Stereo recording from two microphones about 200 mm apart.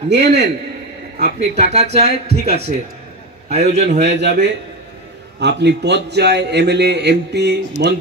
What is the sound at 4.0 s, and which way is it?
A man's voice, 60° right (ahead or behind).